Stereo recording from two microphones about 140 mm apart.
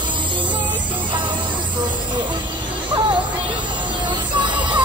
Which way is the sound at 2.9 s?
35° right (ahead or behind).